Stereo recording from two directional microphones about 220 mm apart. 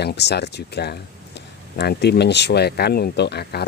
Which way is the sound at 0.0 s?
50° left (ahead or behind).